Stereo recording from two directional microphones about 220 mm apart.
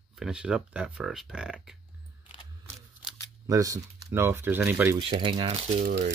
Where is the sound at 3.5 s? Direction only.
15° right (ahead or behind).